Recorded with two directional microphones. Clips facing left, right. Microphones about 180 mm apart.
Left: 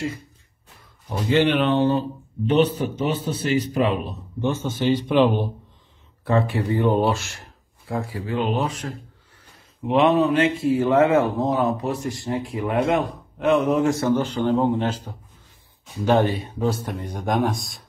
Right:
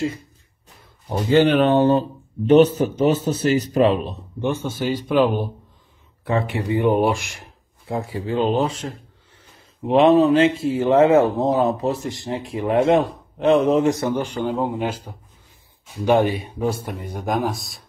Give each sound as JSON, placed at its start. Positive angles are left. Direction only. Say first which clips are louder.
{"t": 1.0, "sound": "speech", "louder": "right 3 dB", "side_deg": -40}
{"t": 4.4, "sound": "speech", "louder": "even", "side_deg": -15}
{"t": 7.9, "sound": "a man's voice", "louder": "right 2 dB", "side_deg": -25}